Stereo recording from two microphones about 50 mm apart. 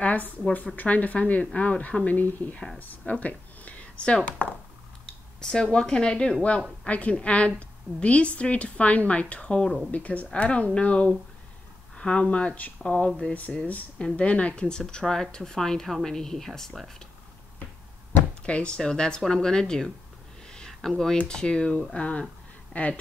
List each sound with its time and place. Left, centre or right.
0.7 s a woman's voice: left
2.9 s a sound: left
4.0 s a woman's voice: left
5.0 s a woman's voice: centre
9.8 s a woman's voice: left; by 16.9 s centre
18.4 s speech: left
20.4 s a sound: centre
20.9 s a woman's voice: centre